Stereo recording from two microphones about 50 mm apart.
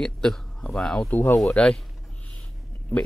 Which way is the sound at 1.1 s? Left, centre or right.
Left.